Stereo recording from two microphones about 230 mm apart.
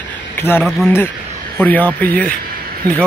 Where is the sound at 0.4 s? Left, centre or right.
Centre.